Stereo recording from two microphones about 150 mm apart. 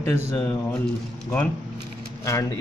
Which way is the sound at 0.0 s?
15° left (ahead or behind).